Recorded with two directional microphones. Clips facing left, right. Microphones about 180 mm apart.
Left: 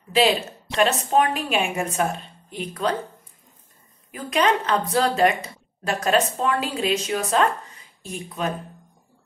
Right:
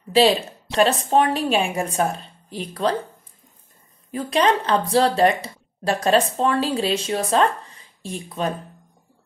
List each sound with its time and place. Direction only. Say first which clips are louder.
0.1 s speech: right 3 dB; 35° right (ahead or behind)
4.1 s speech: right 2 dB; 30° right (ahead or behind)